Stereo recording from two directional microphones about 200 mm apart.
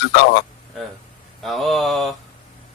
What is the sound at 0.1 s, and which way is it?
Speech, 60° left (ahead or behind).